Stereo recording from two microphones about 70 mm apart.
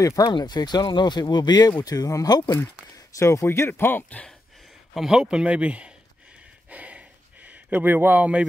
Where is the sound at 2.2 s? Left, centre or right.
Left.